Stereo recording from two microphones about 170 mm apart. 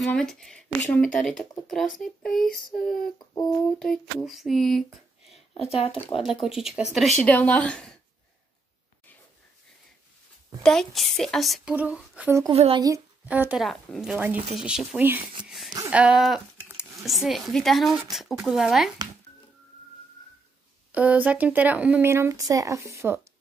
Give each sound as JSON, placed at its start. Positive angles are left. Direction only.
{"t": 0.0, "sound": "speech", "side_deg": 5}
{"t": 5.5, "sound": "speech", "side_deg": 35}
{"t": 6.4, "sound": "speech", "side_deg": -5}
{"t": 7.2, "sound": "a woman's voice", "side_deg": 10}
{"t": 10.6, "sound": "speech", "side_deg": 5}
{"t": 12.5, "sound": "speech", "side_deg": -35}
{"t": 13.2, "sound": "speech", "side_deg": -10}
{"t": 20.9, "sound": "speech", "side_deg": -10}